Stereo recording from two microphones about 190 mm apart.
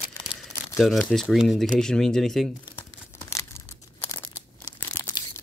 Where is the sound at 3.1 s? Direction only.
15° left (ahead or behind).